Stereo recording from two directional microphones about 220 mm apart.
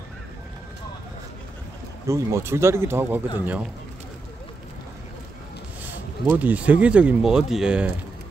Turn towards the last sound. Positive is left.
turn(degrees=-5)  # may be behind; listen again after turning